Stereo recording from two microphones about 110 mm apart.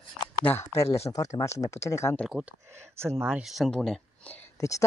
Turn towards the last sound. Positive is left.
turn(degrees=30)  # may be behind; listen again after turning